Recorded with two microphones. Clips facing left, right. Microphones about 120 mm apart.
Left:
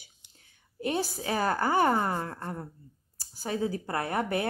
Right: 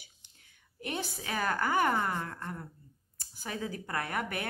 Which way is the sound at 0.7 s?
30° left (ahead or behind).